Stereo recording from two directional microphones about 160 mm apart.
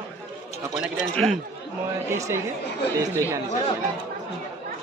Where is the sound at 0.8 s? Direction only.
Centre (ahead or behind).